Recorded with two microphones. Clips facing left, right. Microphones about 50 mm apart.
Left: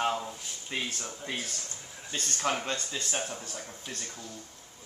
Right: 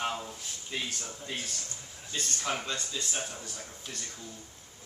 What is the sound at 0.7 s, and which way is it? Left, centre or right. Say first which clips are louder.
Speech: left 2 dB; left.